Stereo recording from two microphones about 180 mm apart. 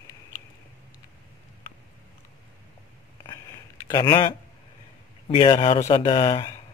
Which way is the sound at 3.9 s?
20° left (ahead or behind).